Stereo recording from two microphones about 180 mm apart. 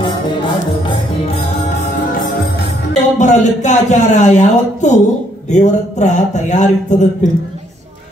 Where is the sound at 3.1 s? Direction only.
40° left (ahead or behind).